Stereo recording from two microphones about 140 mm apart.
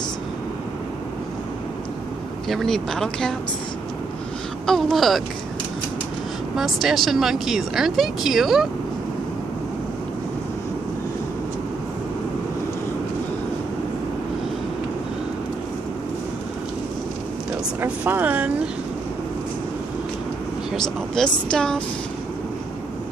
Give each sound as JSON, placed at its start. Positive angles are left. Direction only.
{"t": 2.4, "sound": "speech", "side_deg": 0}
{"t": 4.6, "sound": "speech", "side_deg": 0}
{"t": 6.5, "sound": "speech", "side_deg": 0}
{"t": 17.7, "sound": "speech", "side_deg": -15}
{"t": 20.7, "sound": "speech", "side_deg": 5}